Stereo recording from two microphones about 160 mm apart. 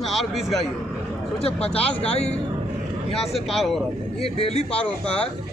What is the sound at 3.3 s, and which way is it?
Speech, centre (ahead or behind).